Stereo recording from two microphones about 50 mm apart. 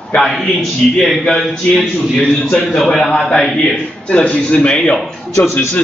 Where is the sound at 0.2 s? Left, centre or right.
Centre.